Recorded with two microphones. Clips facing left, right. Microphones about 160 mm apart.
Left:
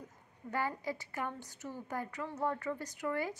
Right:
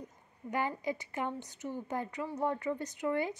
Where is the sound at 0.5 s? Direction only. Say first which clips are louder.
Right 3 dB; 20° right (ahead or behind).